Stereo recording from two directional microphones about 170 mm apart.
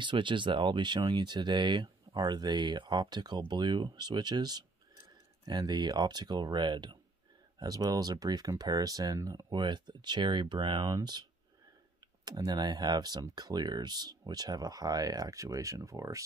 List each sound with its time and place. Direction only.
0.0 s speech: 30° right (ahead or behind)
12.3 s speech: 25° right (ahead or behind)